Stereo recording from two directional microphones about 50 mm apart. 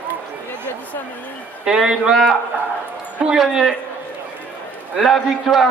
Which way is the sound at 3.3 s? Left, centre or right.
Centre.